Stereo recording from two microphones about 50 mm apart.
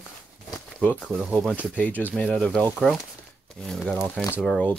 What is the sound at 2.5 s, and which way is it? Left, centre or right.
Speech, centre.